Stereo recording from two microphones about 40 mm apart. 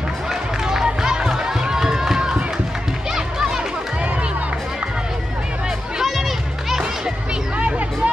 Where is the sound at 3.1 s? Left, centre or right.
Centre.